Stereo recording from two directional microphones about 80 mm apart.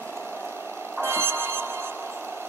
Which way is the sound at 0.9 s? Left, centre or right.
Right.